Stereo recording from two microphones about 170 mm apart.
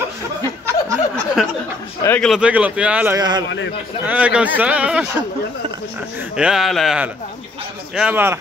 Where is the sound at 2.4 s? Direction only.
10° right (ahead or behind).